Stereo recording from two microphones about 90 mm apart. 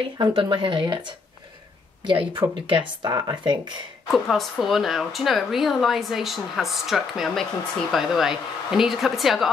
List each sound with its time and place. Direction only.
0.2 s speech: 65° right (ahead or behind); by 3.5 s 50° right (ahead or behind)
4.1 s speech: centre (ahead or behind)